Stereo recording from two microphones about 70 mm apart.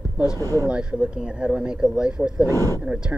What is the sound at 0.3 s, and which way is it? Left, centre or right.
Speech, left.